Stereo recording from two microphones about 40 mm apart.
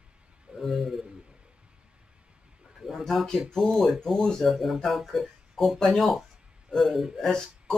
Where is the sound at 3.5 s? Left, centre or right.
Centre.